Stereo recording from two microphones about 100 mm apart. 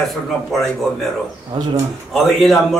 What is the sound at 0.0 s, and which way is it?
A man's voice, centre (ahead or behind).